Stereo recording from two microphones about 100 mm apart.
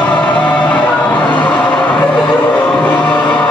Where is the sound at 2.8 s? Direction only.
15° left (ahead or behind).